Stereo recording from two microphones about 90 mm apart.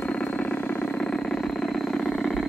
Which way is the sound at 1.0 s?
5° left (ahead or behind).